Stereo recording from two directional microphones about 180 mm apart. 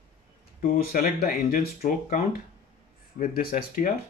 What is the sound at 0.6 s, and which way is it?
Speech, 50° left (ahead or behind).